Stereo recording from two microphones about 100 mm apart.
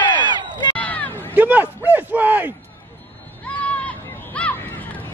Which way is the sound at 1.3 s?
15° right (ahead or behind).